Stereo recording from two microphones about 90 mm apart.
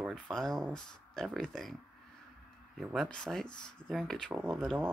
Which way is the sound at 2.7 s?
Centre (ahead or behind).